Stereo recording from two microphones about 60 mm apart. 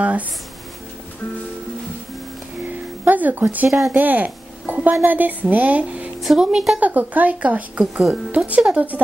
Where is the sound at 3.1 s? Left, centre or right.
Right.